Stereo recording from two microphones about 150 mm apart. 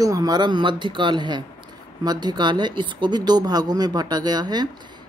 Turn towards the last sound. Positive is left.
turn(degrees=-30)  # may be behind; listen again after turning